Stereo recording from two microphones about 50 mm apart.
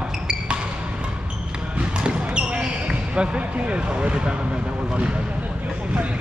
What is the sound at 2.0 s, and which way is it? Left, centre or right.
Basketball bounce, right.